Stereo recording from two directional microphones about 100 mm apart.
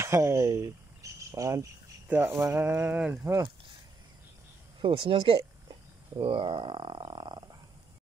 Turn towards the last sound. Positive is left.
turn(degrees=-50)  # may be behind; listen again after turning